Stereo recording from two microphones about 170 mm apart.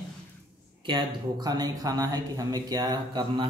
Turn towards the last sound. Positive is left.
turn(degrees=-25)  # may be behind; listen again after turning